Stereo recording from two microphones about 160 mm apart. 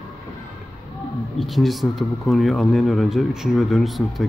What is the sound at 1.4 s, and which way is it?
Speech, centre (ahead or behind).